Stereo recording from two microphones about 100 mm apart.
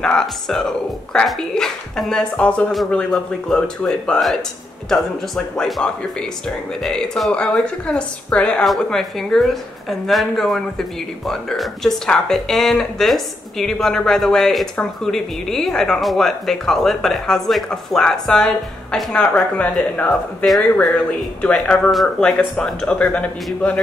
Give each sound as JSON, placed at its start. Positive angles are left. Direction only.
{"t": 0.0, "sound": "a woman's voice", "side_deg": 5}
{"t": 20.1, "sound": "a woman's voice", "side_deg": 0}